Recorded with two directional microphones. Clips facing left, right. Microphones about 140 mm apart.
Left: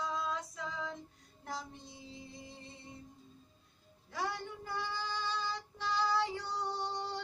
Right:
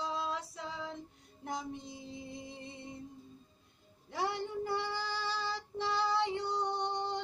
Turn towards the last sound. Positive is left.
turn(degrees=-20)  # may be behind; listen again after turning